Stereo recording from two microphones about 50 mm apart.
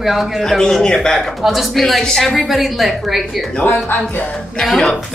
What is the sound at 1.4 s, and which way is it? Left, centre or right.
Speech, centre.